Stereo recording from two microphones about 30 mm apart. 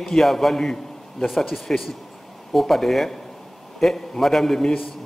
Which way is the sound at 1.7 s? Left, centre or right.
Left.